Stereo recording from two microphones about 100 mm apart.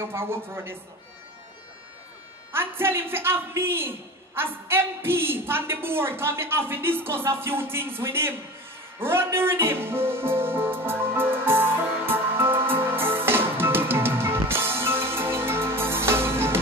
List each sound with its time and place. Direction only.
0.0 s a woman's voice: 25° right (ahead or behind)
2.5 s a woman's voice: 25° right (ahead or behind)
9.0 s music: 25° right (ahead or behind)